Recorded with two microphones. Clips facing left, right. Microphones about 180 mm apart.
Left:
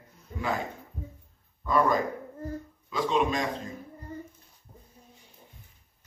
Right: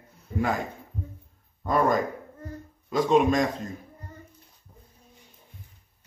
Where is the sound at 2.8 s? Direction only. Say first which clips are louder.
Right 6 dB; 45° right (ahead or behind).